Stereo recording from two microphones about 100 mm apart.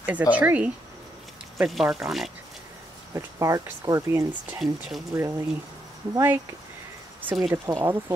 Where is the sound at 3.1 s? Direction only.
35° right (ahead or behind).